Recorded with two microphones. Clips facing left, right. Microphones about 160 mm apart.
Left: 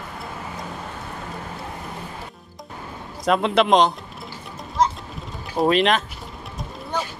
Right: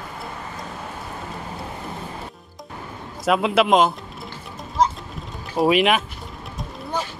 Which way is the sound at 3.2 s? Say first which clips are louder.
Even; 5° right (ahead or behind).